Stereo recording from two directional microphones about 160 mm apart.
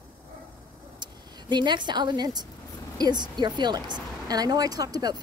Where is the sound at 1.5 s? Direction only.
30° right (ahead or behind).